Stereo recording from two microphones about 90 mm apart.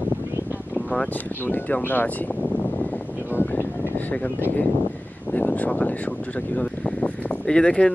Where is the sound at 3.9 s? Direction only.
20° left (ahead or behind).